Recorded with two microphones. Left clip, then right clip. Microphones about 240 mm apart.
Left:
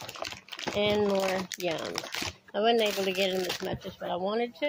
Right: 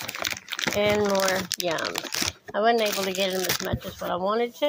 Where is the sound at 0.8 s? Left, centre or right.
Right.